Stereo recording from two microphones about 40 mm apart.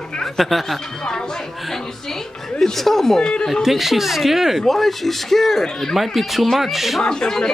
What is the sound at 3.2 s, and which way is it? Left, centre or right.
Speech, centre.